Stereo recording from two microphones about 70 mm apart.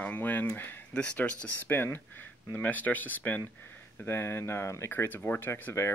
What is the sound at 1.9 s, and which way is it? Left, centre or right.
Speech, left.